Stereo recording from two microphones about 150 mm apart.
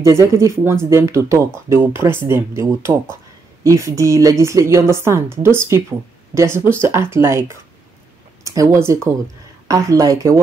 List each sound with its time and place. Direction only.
0.0 s a woman's voice: 20° right (ahead or behind)